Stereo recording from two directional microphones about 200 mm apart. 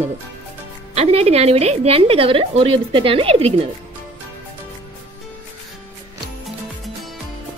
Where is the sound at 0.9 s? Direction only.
30° right (ahead or behind).